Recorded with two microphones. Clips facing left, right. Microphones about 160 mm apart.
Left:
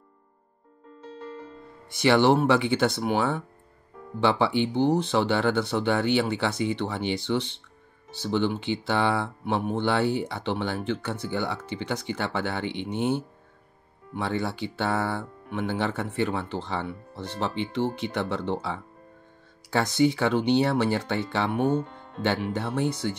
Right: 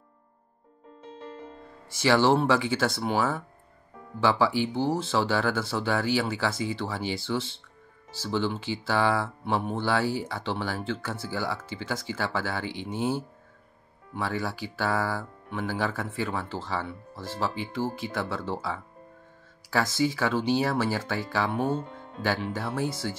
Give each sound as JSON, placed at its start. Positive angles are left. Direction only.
{"t": 1.9, "sound": "speech", "side_deg": 20}